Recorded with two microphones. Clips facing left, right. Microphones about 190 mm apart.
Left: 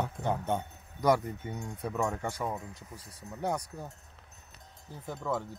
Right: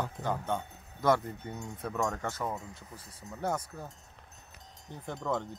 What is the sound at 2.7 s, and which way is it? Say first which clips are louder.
Speech: left 1 dB; 40° left (ahead or behind).